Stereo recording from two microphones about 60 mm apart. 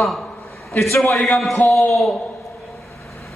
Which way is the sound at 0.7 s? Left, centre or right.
Left.